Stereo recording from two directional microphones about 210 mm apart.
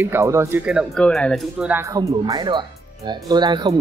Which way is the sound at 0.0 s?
10° right (ahead or behind).